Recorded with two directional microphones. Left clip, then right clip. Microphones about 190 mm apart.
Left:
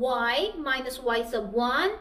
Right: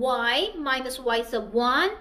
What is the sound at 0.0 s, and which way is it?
A woman's voice, 50° right (ahead or behind).